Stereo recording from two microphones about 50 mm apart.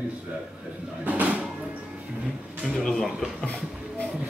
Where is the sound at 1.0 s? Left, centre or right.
Right.